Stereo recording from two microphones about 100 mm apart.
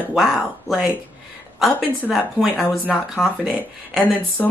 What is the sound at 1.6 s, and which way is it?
Speech, centre (ahead or behind).